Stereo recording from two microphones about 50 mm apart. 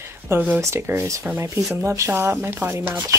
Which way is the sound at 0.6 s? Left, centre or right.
Right.